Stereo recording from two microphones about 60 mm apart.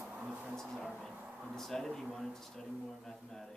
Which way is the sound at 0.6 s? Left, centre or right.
Centre.